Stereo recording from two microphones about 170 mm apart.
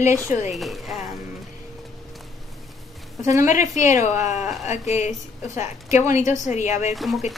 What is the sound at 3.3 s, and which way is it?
A woman's voice, 45° left (ahead or behind).